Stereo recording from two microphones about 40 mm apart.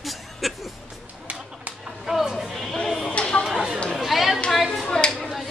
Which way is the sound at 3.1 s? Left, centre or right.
Left.